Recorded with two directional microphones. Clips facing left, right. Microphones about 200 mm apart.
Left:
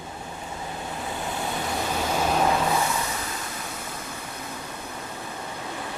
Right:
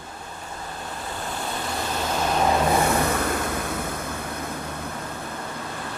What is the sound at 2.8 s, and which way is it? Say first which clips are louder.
Vehicle: right 6 dB; 60° right (ahead or behind).